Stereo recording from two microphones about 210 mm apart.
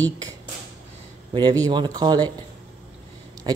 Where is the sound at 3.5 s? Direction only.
20° right (ahead or behind).